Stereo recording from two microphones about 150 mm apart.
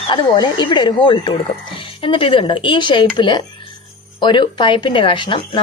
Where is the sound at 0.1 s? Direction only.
30° left (ahead or behind).